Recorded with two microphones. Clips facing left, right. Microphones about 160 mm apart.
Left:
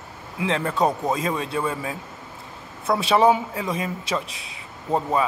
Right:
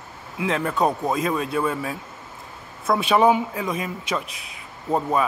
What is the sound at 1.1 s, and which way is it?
A man's voice, 30° left (ahead or behind).